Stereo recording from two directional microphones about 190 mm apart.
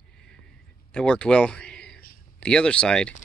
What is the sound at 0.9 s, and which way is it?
Speech, 5° left (ahead or behind).